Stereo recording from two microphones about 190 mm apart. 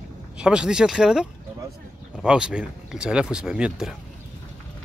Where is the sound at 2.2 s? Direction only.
5° right (ahead or behind).